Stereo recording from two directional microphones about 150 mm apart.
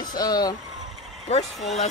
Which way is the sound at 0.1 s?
25° left (ahead or behind).